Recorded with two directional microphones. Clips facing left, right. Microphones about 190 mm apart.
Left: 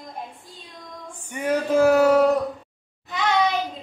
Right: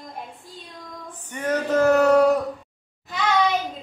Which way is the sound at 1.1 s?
10° left (ahead or behind).